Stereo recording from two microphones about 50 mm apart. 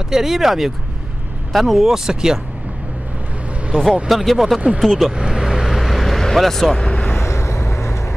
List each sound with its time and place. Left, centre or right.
0.1 s speech: centre
4.1 s speech: centre
5.1 s vehicle: centre
6.2 s speech: centre
6.8 s vehicle: left
7.2 s vehicle: left